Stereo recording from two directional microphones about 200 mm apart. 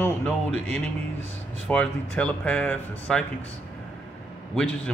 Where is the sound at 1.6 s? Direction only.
5° left (ahead or behind).